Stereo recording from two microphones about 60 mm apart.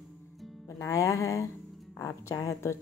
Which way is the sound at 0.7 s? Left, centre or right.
Left.